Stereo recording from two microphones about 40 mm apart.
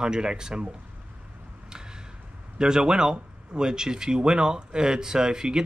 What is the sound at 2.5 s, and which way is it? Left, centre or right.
Speech, centre.